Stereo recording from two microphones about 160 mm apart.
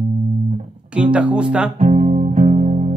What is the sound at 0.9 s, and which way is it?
Speech, 5° right (ahead or behind).